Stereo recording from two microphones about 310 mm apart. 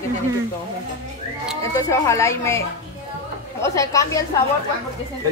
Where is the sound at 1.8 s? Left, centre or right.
Centre.